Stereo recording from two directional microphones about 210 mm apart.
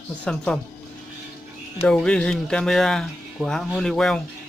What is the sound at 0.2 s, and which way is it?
Speech, 5° left (ahead or behind).